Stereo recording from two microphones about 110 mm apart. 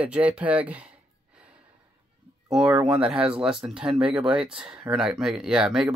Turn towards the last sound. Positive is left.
turn(degrees=-5)  # may be behind; listen again after turning